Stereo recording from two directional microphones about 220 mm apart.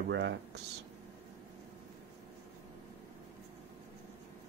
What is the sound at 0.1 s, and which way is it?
Speech, 55° right (ahead or behind).